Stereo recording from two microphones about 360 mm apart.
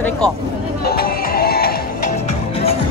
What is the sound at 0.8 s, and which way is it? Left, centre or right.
Music, left.